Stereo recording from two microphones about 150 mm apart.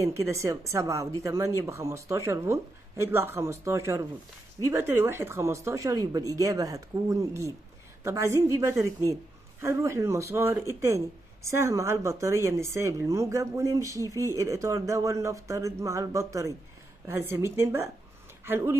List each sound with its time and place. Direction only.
0.0 s a woman's voice: 20° right (ahead or behind)